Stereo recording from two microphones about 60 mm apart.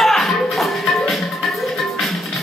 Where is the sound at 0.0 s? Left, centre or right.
Centre.